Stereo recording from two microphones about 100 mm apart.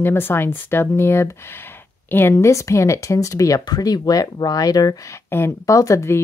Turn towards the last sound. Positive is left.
turn(degrees=30)  # may be behind; listen again after turning